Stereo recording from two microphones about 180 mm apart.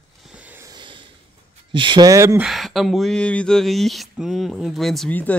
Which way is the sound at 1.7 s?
25° right (ahead or behind).